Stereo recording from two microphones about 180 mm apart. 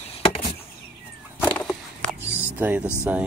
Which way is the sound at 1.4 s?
10° left (ahead or behind).